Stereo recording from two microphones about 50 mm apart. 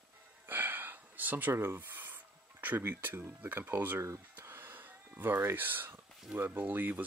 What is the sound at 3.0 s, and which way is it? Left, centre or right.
Speech, right.